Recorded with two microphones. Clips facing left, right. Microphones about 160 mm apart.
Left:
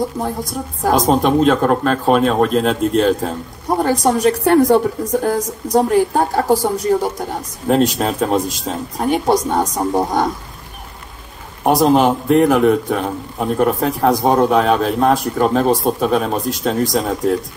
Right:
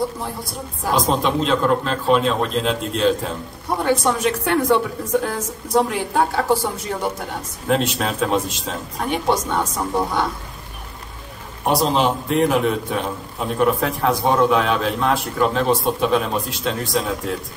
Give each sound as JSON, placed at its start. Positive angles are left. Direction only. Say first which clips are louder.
{"t": 0.8, "sound": "a man's voice", "louder": "left 5 dB", "side_deg": 45}
{"t": 11.6, "sound": "a man's voice", "louder": "left 6 dB", "side_deg": 50}